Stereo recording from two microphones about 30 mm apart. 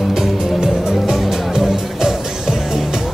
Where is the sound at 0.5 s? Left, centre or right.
Right.